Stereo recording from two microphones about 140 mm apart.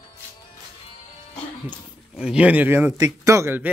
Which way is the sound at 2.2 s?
5° right (ahead or behind).